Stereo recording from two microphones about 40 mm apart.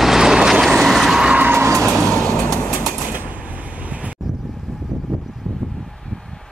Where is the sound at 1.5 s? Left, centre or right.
Right.